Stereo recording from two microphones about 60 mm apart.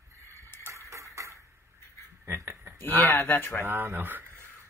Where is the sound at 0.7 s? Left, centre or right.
Right.